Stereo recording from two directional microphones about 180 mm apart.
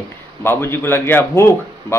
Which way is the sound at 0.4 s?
10° left (ahead or behind).